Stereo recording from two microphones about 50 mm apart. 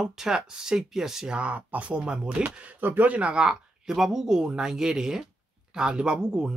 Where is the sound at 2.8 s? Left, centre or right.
Right.